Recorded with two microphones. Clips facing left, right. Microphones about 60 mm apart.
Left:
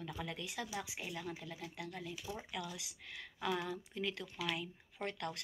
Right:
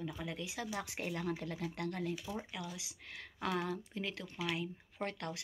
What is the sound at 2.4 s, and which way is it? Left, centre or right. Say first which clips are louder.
Speech: right 1 dB; right.